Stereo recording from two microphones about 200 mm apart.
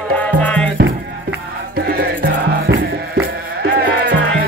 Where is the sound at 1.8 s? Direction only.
50° right (ahead or behind).